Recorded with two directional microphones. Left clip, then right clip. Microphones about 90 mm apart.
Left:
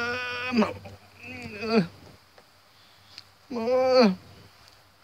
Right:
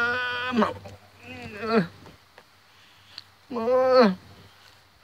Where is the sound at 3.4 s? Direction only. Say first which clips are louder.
Right 2 dB; 20° left (ahead or behind).